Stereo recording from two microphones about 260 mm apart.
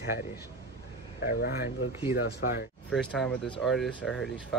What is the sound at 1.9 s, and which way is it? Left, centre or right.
Speech, centre.